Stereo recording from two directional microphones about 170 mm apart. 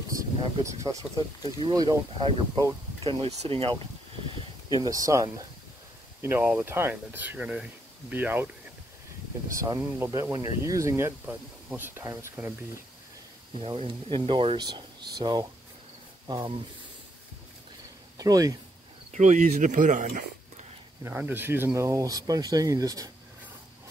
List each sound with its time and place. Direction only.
0.1 s a sound: 20° right (ahead or behind)
1.6 s speech: 25° right (ahead or behind)
4.8 s speech: 20° right (ahead or behind)
9.6 s speech: 15° right (ahead or behind)
13.6 s speech: 30° right (ahead or behind)
18.1 s speech: 20° right (ahead or behind)
19.1 s speech: 45° right (ahead or behind)
21.0 s speech: 10° right (ahead or behind)